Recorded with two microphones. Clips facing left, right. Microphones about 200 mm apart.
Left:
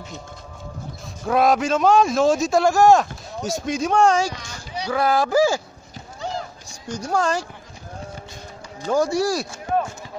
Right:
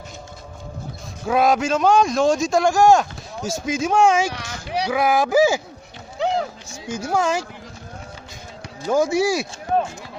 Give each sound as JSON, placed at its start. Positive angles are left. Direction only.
{"t": 1.2, "sound": "a man's voice", "side_deg": 0}
{"t": 4.3, "sound": "a sound", "side_deg": -70}
{"t": 4.8, "sound": "speech", "side_deg": -15}
{"t": 6.1, "sound": "music", "side_deg": -70}
{"t": 6.7, "sound": "a man's voice", "side_deg": -5}
{"t": 9.1, "sound": "a man's voice", "side_deg": 0}